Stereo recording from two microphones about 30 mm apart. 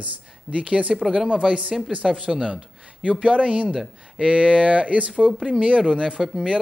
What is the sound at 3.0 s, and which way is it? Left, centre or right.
Speech, right.